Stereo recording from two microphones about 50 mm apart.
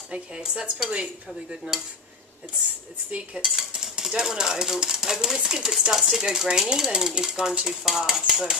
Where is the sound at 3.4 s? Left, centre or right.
Centre.